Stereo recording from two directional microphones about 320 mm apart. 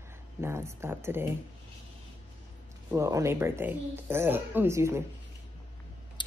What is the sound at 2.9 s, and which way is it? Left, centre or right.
Speech, centre.